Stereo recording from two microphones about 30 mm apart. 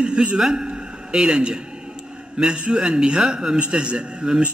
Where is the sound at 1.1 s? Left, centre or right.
Centre.